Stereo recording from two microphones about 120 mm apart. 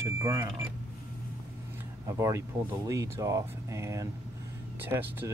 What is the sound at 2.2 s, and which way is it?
Speech, 25° right (ahead or behind).